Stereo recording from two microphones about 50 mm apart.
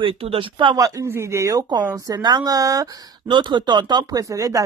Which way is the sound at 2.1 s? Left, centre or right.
Right.